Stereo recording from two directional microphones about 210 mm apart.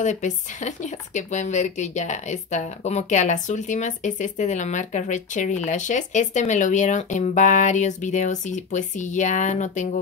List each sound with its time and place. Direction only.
0.0 s speech: 35° left (ahead or behind)